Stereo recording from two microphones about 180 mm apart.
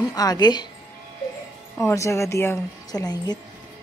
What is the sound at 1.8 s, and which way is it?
A woman's voice, 15° left (ahead or behind).